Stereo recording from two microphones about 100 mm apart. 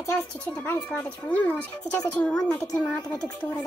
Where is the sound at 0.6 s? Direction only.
20° left (ahead or behind).